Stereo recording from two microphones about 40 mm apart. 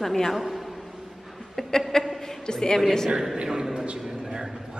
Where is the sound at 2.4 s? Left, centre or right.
Centre.